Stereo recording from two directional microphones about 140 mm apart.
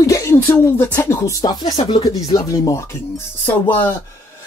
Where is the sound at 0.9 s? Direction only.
20° left (ahead or behind).